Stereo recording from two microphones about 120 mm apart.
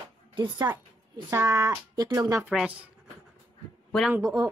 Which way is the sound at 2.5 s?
10° right (ahead or behind).